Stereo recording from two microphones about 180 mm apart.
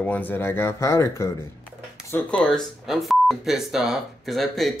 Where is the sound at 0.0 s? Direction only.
10° left (ahead or behind).